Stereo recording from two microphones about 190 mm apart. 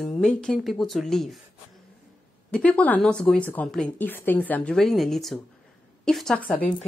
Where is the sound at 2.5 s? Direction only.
5° left (ahead or behind).